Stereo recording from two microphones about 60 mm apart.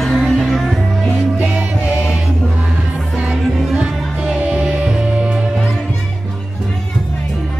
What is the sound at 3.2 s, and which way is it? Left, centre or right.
Music, centre.